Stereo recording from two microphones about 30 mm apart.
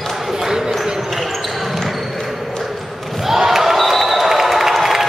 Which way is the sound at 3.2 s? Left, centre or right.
Centre.